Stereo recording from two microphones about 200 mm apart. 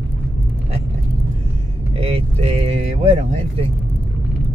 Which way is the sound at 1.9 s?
30° right (ahead or behind).